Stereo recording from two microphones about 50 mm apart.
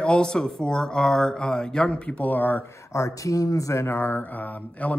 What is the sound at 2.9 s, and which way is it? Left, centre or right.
Speech, left.